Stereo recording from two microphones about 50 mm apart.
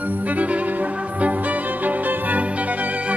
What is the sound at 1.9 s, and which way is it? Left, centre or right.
Music, right.